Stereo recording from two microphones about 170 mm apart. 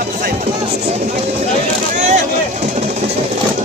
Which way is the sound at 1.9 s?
45° right (ahead or behind).